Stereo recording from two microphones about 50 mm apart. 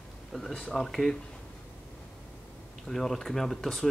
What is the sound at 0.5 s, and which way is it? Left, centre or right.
Speech, centre.